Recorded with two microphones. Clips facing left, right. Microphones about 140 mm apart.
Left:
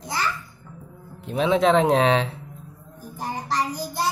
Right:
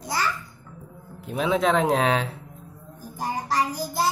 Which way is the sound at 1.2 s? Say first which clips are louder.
Left 3 dB; 5° right (ahead or behind).